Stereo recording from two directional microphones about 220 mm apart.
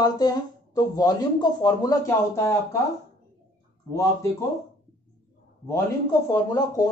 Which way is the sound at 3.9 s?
15° left (ahead or behind).